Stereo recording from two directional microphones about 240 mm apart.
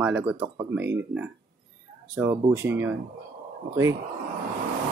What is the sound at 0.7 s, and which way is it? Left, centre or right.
Speech, centre.